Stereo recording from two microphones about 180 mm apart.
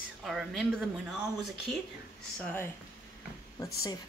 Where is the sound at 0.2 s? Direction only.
Centre (ahead or behind).